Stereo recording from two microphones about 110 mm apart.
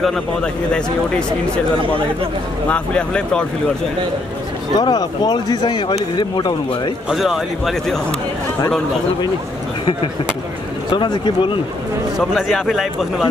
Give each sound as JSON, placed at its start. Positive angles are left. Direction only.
{"t": 0.0, "sound": "a man's voice", "side_deg": 10}
{"t": 2.7, "sound": "a man's voice", "side_deg": 10}
{"t": 4.7, "sound": "speech", "side_deg": 40}
{"t": 7.1, "sound": "speech", "side_deg": -5}
{"t": 10.9, "sound": "speech", "side_deg": 40}
{"t": 12.2, "sound": "speech", "side_deg": 0}